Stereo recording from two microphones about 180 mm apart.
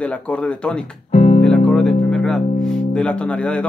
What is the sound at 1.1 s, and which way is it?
Music, 40° left (ahead or behind).